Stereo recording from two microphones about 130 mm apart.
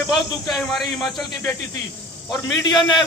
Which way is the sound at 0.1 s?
Centre (ahead or behind).